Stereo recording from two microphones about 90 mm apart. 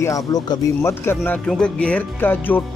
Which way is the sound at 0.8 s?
30° left (ahead or behind).